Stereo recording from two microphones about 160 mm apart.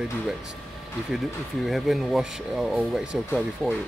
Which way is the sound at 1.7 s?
Centre (ahead or behind).